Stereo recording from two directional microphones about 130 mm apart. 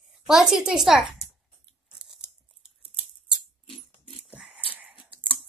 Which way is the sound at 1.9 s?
5° right (ahead or behind).